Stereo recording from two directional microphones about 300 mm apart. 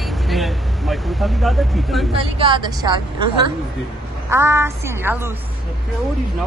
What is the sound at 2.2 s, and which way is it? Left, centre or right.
Speech, centre.